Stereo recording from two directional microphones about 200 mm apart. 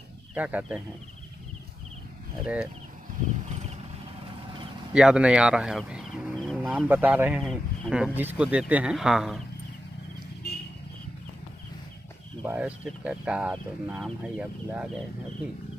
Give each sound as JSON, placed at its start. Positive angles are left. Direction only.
{"t": 0.3, "sound": "speech", "side_deg": -10}
{"t": 2.4, "sound": "speech", "side_deg": -5}
{"t": 3.4, "sound": "vehicle", "side_deg": -35}
{"t": 4.9, "sound": "speech", "side_deg": -5}
{"t": 12.4, "sound": "speech", "side_deg": -5}